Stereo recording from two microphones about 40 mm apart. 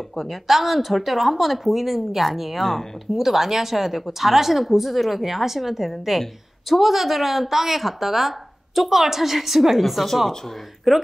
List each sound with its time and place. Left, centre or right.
0.1 s a woman's voice: centre